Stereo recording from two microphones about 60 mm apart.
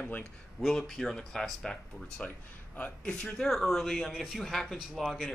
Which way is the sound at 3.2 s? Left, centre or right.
Centre.